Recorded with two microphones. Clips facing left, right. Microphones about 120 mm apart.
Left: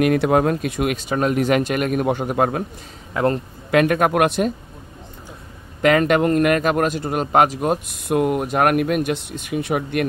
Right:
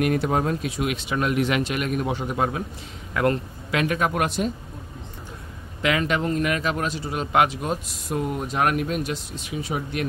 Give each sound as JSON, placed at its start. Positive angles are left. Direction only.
{"t": 0.0, "sound": "speech", "side_deg": 80}
{"t": 3.1, "sound": "a man's voice", "side_deg": 30}
{"t": 3.7, "sound": "speech", "side_deg": 55}
{"t": 5.8, "sound": "speech", "side_deg": 50}